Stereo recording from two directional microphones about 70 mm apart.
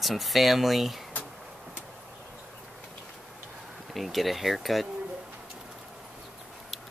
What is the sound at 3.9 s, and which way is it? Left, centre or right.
Speech, centre.